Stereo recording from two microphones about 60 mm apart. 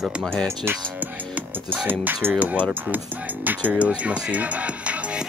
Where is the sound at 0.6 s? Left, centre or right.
Right.